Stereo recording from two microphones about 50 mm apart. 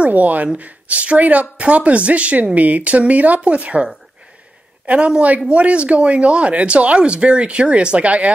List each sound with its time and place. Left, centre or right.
0.0 s speech: right